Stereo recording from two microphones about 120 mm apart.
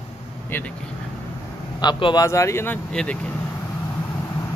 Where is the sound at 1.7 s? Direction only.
40° left (ahead or behind).